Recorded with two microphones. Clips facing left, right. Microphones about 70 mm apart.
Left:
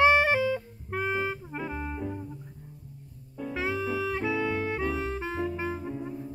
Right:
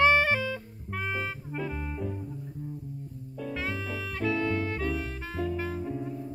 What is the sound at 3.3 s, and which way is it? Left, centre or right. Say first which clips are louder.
Music: left 3 dB; centre.